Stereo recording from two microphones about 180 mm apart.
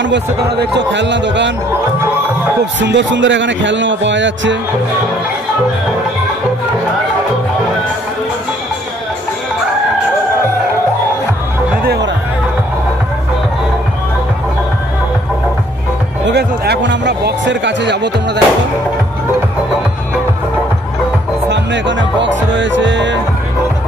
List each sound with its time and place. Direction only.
0.0 s a man's voice: 75° right (ahead or behind)
2.8 s speech: 90° right
11.8 s music: 65° right (ahead or behind)
16.3 s a man's voice: 65° right (ahead or behind)
21.5 s speech: 85° right